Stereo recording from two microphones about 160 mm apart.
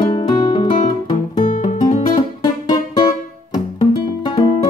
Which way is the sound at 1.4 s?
50° left (ahead or behind).